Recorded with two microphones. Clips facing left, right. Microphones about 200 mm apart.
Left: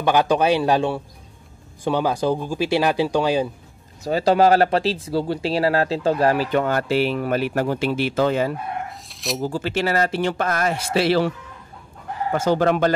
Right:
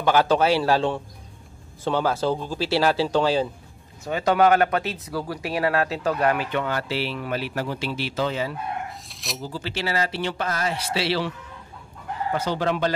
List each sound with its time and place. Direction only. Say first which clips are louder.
0.0 s speech: left 1 dB; 15° left (ahead or behind)
4.0 s speech: left 3 dB; 30° left (ahead or behind); by 8.5 s 50° left (ahead or behind)
9.1 s speech: left 8 dB; centre (ahead or behind)
9.4 s speech: left 7 dB; 50° left (ahead or behind)